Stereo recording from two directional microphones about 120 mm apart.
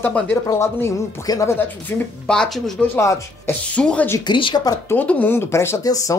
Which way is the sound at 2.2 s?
5° left (ahead or behind).